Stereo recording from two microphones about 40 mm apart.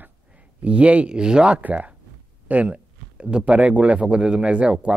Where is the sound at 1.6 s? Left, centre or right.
Right.